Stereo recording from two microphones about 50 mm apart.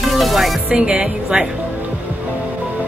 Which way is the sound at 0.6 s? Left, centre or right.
Centre.